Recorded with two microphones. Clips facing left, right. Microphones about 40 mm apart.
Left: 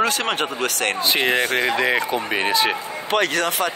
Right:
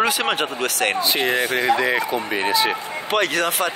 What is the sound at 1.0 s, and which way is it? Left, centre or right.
Speech, left.